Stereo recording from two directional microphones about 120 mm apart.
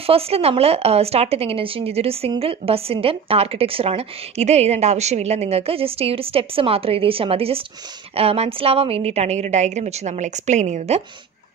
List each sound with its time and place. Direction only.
0.0 s speech: 55° right (ahead or behind); by 11.0 s 75° right (ahead or behind)